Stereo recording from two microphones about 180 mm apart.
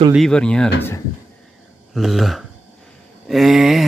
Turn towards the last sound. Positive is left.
turn(degrees=0)  # may be behind; listen again after turning